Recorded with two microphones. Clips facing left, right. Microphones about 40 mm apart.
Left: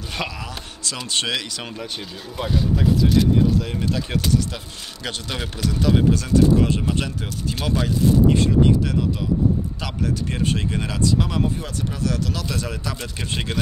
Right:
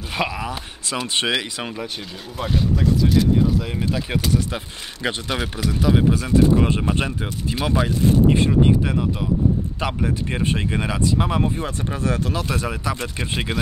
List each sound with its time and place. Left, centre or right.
0.2 s speech: right
2.7 s speech: centre; by 7.1 s right
7.5 s speech: centre